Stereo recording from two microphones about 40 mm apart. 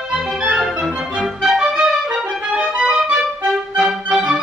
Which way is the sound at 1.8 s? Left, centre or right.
Centre.